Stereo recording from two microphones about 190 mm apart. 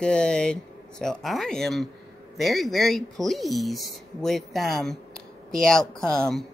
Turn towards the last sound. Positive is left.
turn(degrees=5)  # may be behind; listen again after turning